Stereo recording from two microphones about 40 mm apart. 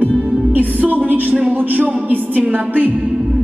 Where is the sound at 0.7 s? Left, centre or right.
Right.